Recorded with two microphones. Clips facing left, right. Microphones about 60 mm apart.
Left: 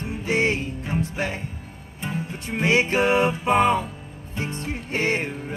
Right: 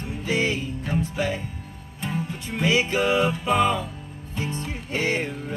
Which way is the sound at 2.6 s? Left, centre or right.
Left.